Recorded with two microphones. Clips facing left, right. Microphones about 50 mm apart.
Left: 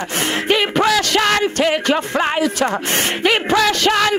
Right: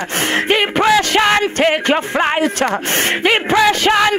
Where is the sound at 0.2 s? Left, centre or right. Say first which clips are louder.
Right 2 dB; right.